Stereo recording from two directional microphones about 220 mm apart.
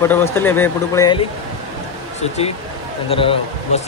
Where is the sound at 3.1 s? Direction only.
25° left (ahead or behind).